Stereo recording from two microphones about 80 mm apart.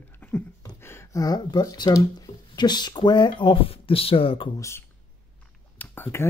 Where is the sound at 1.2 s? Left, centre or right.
Left.